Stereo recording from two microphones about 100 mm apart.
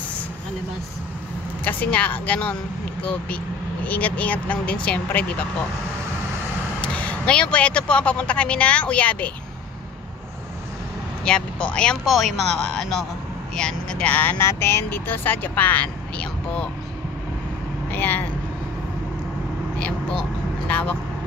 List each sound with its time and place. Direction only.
1.6 s speech: 15° left (ahead or behind)
6.8 s speech: 15° left (ahead or behind)
11.2 s speech: 10° left (ahead or behind)
17.9 s speech: 20° left (ahead or behind)
20.6 s speech: 15° left (ahead or behind)